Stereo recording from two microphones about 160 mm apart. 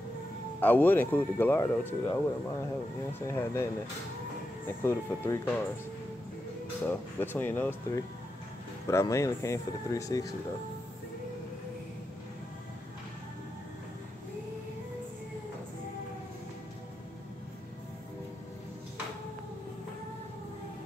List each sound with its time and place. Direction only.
0.6 s speech: 10° left (ahead or behind)
3.3 s speech: 15° left (ahead or behind)
4.6 s speech: 15° left (ahead or behind)
6.9 s speech: 15° left (ahead or behind)